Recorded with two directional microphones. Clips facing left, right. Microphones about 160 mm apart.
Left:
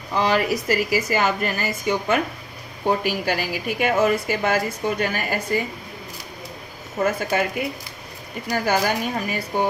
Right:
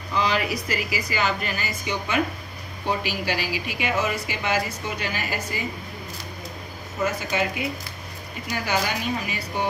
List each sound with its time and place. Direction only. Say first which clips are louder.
0.1 s speech: left 4 dB; 45° left (ahead or behind)
7.1 s speech: left 4 dB; 50° left (ahead or behind)
8.5 s speech: left 5 dB; 45° left (ahead or behind)